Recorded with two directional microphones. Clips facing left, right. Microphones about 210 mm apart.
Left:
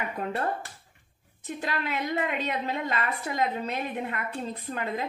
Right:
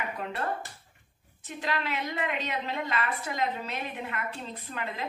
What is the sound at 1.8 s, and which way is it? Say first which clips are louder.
A woman's voice: left 3 dB; 45° left (ahead or behind).